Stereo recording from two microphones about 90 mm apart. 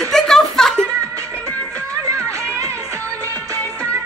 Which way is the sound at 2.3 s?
35° right (ahead or behind).